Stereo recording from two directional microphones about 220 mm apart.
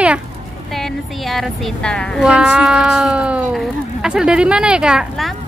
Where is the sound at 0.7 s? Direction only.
Centre (ahead or behind).